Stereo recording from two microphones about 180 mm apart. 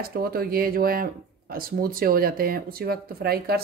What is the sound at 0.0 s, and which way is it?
Speech, 55° right (ahead or behind).